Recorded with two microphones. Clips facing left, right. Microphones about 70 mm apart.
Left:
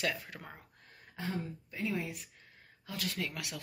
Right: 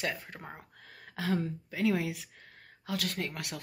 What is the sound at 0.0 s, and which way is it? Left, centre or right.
Speech, right.